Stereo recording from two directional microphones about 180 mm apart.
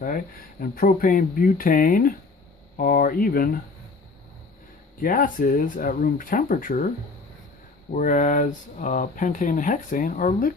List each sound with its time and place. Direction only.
0.0 s speech: 50° left (ahead or behind)
5.0 s speech: 50° left (ahead or behind)
7.9 s speech: 45° left (ahead or behind)